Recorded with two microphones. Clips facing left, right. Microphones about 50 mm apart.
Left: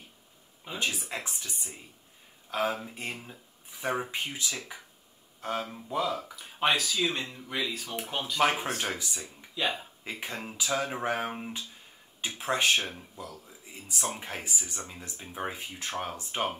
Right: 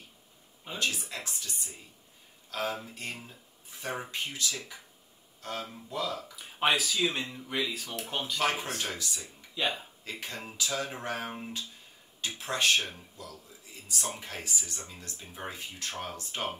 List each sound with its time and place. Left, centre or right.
0.7 s speech: left
6.3 s speech: centre
8.4 s speech: left
9.6 s speech: centre
10.0 s speech: left